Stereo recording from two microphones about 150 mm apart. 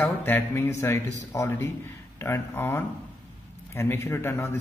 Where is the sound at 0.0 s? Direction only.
15° left (ahead or behind).